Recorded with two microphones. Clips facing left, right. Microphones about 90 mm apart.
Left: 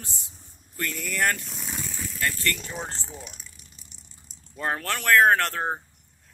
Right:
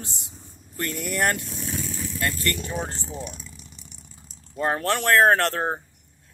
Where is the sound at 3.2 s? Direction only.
75° right (ahead or behind).